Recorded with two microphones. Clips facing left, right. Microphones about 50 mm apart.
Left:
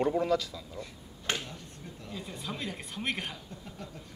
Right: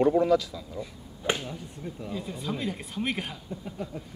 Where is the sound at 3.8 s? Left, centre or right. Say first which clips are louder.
Right 9 dB; centre.